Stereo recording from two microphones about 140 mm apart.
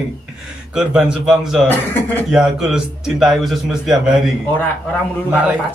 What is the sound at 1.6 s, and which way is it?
Speech, 15° left (ahead or behind).